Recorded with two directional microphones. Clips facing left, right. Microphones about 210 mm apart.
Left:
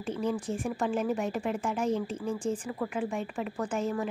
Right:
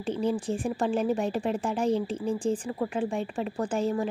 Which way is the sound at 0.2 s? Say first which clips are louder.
Right 3 dB; 30° right (ahead or behind).